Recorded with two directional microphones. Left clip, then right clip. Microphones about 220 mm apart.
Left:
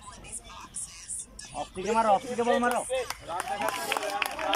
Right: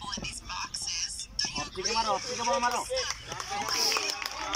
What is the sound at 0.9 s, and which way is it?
Music, 40° right (ahead or behind).